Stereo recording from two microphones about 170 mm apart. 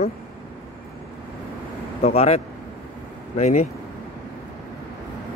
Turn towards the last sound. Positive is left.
turn(degrees=45)  # may be behind; listen again after turning